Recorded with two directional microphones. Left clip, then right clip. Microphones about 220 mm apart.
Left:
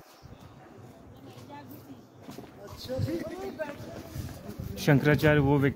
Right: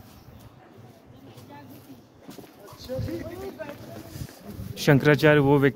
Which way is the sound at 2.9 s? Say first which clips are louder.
Right 2 dB; 45° left (ahead or behind).